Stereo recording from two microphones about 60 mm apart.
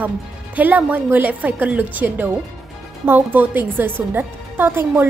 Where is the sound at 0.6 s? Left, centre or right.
Right.